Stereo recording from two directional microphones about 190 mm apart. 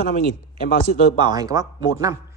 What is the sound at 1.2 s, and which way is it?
Speech, 20° right (ahead or behind).